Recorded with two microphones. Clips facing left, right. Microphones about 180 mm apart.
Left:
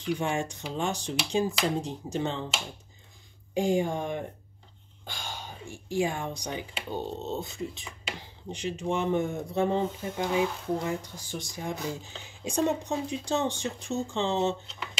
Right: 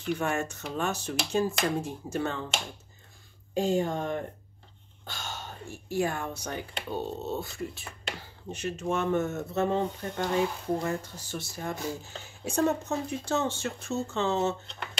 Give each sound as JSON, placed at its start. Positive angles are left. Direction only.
{"t": 0.0, "sound": "speech", "side_deg": 15}
{"t": 3.5, "sound": "speech", "side_deg": 10}